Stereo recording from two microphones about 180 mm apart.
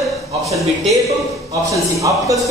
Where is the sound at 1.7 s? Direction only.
20° right (ahead or behind).